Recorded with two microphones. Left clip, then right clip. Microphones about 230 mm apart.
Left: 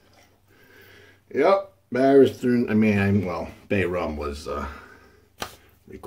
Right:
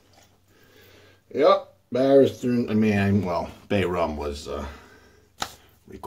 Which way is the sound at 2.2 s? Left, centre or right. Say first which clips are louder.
Left 2 dB; left.